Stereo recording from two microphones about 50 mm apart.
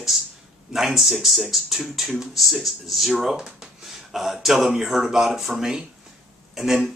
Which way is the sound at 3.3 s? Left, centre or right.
Centre.